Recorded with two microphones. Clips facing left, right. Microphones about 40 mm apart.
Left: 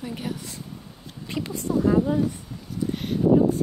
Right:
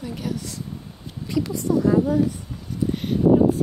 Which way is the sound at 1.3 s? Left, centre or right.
Left.